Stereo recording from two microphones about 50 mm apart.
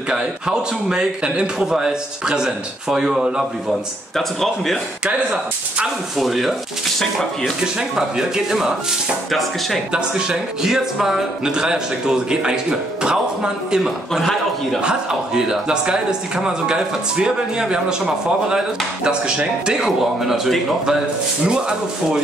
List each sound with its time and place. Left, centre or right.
0.1 s a man's voice: centre
5.0 s speech: right
6.1 s a man's voice: centre
7.0 s speech: centre
7.6 s a man's voice: centre
9.9 s a man's voice: centre
14.1 s a man's voice: centre
14.8 s a man's voice: centre